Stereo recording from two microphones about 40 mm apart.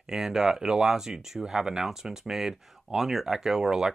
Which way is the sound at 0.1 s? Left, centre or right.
Centre.